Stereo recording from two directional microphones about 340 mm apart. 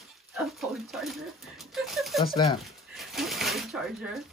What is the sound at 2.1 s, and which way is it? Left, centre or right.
Speech, centre.